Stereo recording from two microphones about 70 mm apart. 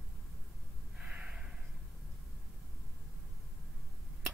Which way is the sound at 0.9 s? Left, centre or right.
Centre.